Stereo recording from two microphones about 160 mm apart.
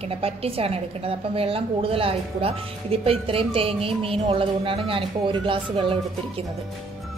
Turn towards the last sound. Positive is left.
turn(degrees=-35)  # may be behind; listen again after turning